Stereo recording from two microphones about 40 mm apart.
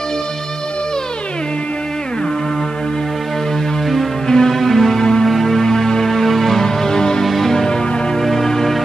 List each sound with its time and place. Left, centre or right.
4.3 s music: centre